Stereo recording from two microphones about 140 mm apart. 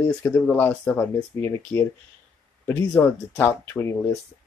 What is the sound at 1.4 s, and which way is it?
Speech, 20° left (ahead or behind).